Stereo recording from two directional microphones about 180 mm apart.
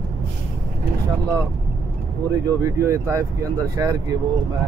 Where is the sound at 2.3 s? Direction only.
15° right (ahead or behind).